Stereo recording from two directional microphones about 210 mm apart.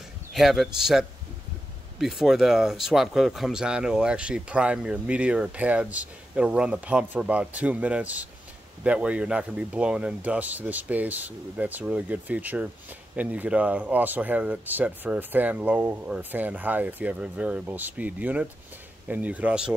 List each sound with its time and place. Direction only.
0.3 s speech: centre (ahead or behind)